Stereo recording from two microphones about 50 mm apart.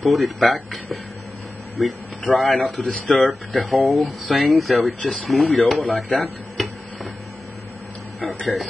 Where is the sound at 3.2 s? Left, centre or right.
Centre.